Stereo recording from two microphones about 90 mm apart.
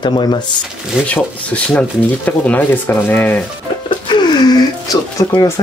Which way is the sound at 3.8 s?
65° left (ahead or behind).